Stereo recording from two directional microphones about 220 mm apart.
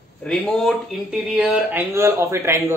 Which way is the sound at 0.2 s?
5° left (ahead or behind).